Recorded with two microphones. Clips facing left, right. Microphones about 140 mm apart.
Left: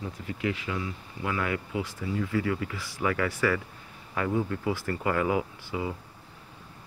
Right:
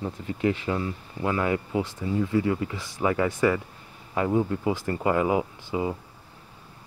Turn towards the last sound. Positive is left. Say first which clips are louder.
# right 5 dB
turn(degrees=-25)  # may be behind; listen again after turning